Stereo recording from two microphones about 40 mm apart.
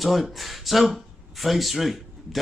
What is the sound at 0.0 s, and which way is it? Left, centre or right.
Speech, centre.